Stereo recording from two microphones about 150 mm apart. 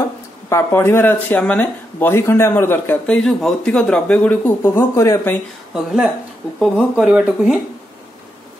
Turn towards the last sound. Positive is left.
turn(degrees=-5)  # may be behind; listen again after turning